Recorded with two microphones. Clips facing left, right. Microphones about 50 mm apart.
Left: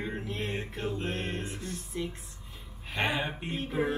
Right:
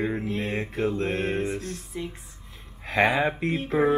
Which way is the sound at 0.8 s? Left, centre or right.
Right.